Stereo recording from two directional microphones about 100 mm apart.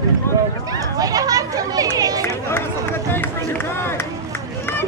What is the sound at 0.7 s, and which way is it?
Speech, 35° right (ahead or behind).